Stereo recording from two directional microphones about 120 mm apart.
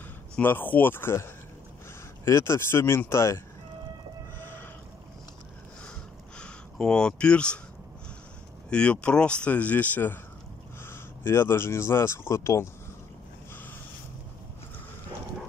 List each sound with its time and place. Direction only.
0.4 s speech: 15° left (ahead or behind)
4.4 s whale vocalization: 15° left (ahead or behind)
6.3 s speech: 5° left (ahead or behind)
8.6 s speech: 10° left (ahead or behind)